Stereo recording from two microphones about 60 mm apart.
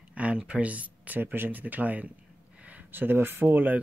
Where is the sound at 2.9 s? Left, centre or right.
Right.